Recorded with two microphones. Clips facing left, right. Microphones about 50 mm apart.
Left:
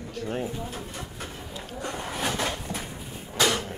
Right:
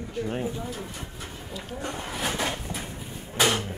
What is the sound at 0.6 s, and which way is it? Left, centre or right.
Speech, left.